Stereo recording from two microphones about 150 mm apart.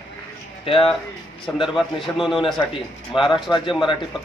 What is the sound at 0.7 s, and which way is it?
Speech, 35° left (ahead or behind).